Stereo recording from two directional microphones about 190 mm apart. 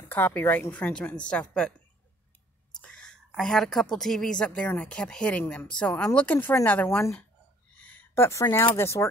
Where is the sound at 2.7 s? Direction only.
5° left (ahead or behind).